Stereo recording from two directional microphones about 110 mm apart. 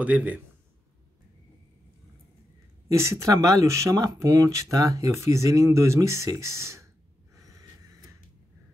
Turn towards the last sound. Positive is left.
turn(degrees=-30)  # may be behind; listen again after turning